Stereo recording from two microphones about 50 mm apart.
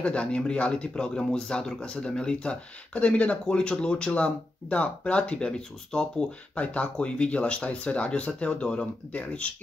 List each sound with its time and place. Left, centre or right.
0.0 s speech: left